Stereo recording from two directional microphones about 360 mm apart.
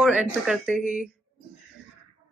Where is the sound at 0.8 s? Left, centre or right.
Centre.